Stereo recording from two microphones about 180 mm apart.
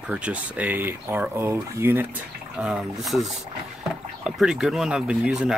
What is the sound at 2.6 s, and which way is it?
Speech, centre (ahead or behind).